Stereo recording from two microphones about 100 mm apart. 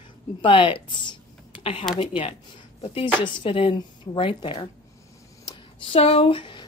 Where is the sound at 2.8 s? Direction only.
60° left (ahead or behind).